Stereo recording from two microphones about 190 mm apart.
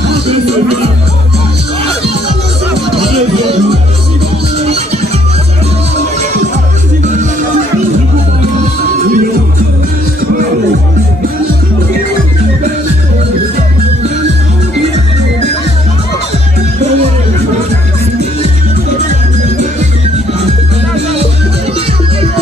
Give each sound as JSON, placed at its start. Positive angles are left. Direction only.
{"t": 0.1, "sound": "speech", "side_deg": -30}
{"t": 3.0, "sound": "music", "side_deg": -30}
{"t": 4.6, "sound": "music", "side_deg": -35}
{"t": 9.0, "sound": "music", "side_deg": -45}